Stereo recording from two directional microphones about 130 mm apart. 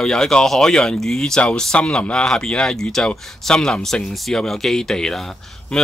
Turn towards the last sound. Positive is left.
turn(degrees=5)  # may be behind; listen again after turning